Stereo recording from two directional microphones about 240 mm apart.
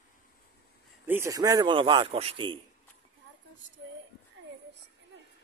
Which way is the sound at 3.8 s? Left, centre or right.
Right.